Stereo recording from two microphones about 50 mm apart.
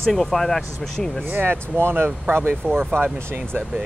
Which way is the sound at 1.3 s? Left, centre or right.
Right.